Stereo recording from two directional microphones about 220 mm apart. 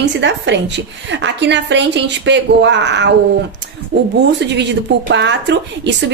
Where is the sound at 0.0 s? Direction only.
55° right (ahead or behind).